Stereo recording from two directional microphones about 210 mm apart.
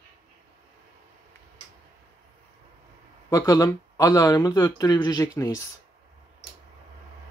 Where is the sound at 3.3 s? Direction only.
15° left (ahead or behind).